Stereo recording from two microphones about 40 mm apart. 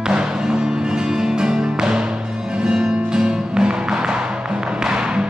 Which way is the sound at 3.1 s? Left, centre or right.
Centre.